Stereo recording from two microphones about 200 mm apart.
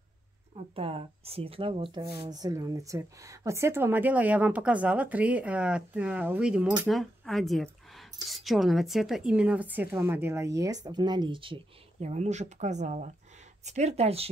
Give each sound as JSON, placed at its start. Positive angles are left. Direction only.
{"t": 0.6, "sound": "speech", "side_deg": -30}